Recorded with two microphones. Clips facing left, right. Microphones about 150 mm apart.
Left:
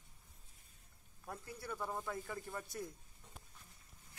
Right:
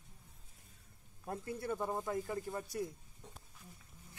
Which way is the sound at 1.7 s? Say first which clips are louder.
Right 6 dB; 45° right (ahead or behind).